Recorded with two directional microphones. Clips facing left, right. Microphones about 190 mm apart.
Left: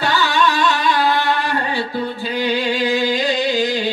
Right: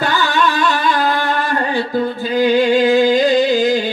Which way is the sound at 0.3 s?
45° right (ahead or behind).